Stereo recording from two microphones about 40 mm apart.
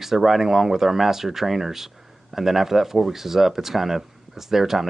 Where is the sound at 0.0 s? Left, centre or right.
Centre.